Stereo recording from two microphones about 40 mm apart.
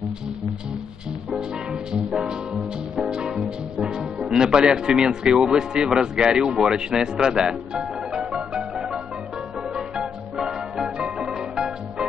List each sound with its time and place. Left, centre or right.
1.9 s music: centre
5.0 s speech: centre
9.8 s music: centre